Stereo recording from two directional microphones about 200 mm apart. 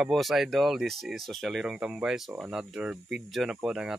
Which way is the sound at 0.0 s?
Centre (ahead or behind).